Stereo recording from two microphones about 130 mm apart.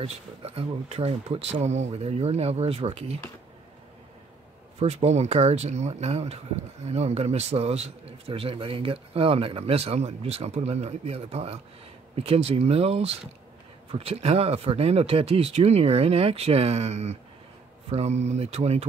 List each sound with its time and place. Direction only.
0.0 s a man's voice: 50° right (ahead or behind)
4.7 s a man's voice: 55° right (ahead or behind)